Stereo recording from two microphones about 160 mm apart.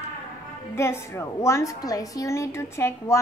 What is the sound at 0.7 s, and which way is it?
A woman's voice, 15° left (ahead or behind).